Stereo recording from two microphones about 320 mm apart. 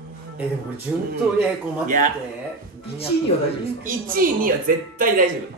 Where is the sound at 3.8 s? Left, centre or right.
Right.